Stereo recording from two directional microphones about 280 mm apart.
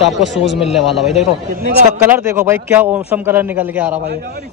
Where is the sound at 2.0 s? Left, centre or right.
Centre.